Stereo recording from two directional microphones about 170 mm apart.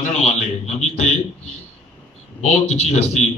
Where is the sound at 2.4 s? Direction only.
45° left (ahead or behind).